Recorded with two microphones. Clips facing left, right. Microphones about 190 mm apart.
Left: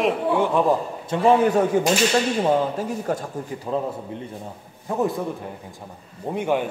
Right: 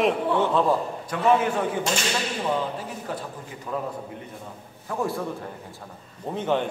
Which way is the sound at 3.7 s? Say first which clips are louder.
Left 3 dB; 25° left (ahead or behind).